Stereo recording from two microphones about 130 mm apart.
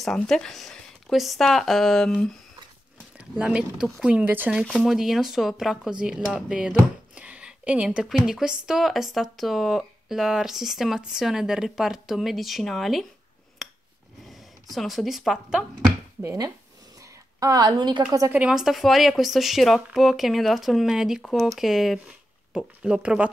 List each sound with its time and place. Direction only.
0.0 s speech: centre (ahead or behind)
3.2 s speech: 10° right (ahead or behind)
4.6 s speech: centre (ahead or behind)
13.6 s a sound: centre (ahead or behind)
14.3 s speech: centre (ahead or behind)
16.2 s a woman's voice: 25° right (ahead or behind)
18.3 s speech: 10° right (ahead or behind)